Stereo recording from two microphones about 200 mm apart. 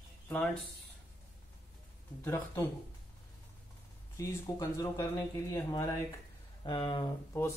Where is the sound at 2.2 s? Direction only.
15° left (ahead or behind).